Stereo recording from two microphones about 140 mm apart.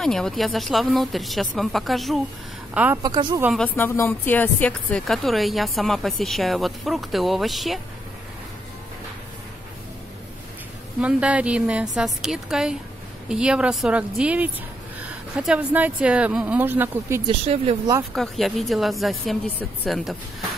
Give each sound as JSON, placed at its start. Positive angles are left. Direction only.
{"t": 0.0, "sound": "speech", "side_deg": 5}
{"t": 2.7, "sound": "speech", "side_deg": -10}
{"t": 3.0, "sound": "speech", "side_deg": -30}
{"t": 3.5, "sound": "speech", "side_deg": 10}
{"t": 11.0, "sound": "speech", "side_deg": -10}
{"t": 17.3, "sound": "speech", "side_deg": -45}
{"t": 18.1, "sound": "speech", "side_deg": 0}